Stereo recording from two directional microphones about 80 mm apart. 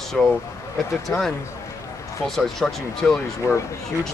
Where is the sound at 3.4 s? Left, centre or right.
Left.